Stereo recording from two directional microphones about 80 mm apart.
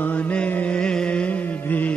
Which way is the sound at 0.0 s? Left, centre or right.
Centre.